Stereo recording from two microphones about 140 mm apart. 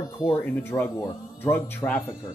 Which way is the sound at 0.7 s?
25° left (ahead or behind).